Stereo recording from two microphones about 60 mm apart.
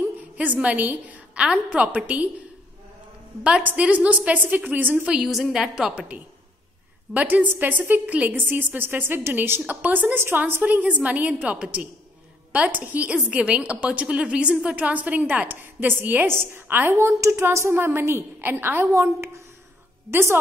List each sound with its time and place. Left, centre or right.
0.6 s a woman's voice: right
3.6 s a woman's voice: right
5.0 s a woman's voice: centre
5.9 s a woman's voice: right
7.2 s a woman's voice: right
16.9 s a woman's voice: right
18.9 s a woman's voice: right